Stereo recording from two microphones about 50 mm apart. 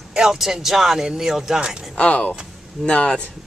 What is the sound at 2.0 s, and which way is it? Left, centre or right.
Speech, left.